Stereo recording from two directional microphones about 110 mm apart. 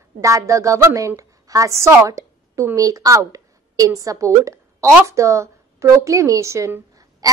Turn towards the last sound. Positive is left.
turn(degrees=-30)  # may be behind; listen again after turning